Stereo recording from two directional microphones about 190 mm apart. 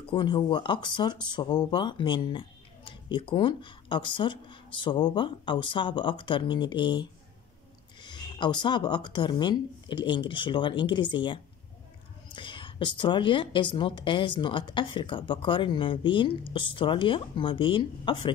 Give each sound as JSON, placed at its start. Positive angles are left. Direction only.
{"t": 0.1, "sound": "speech", "side_deg": 25}